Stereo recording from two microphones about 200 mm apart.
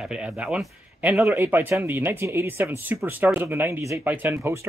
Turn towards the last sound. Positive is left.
turn(degrees=-15)  # may be behind; listen again after turning